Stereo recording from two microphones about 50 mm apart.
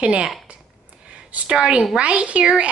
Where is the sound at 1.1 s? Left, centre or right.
Right.